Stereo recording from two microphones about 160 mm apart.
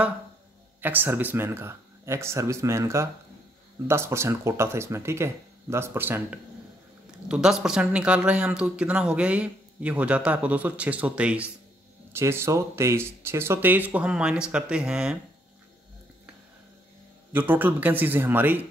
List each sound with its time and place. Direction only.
0.7 s speech: 10° right (ahead or behind)
17.3 s speech: 10° right (ahead or behind)